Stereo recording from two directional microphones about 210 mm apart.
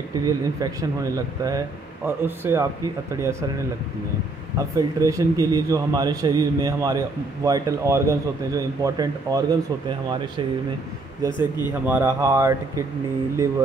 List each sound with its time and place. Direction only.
0.2 s a man's voice: 15° right (ahead or behind)
4.6 s a man's voice: 15° right (ahead or behind)
11.3 s speech: 20° left (ahead or behind)
11.8 s a man's voice: 10° right (ahead or behind)